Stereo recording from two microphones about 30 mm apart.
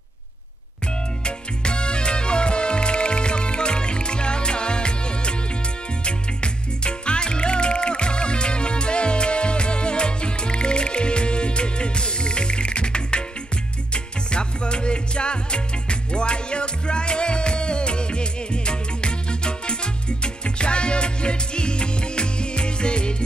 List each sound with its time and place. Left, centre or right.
1.2 s music: left